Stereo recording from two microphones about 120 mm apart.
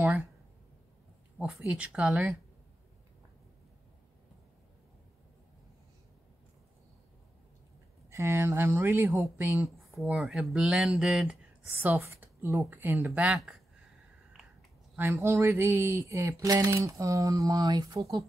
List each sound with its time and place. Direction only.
1.4 s speech: 10° right (ahead or behind)
8.1 s speech: 20° right (ahead or behind)
9.8 s speech: centre (ahead or behind)
11.8 s speech: 20° right (ahead or behind)
15.0 s speech: 20° right (ahead or behind)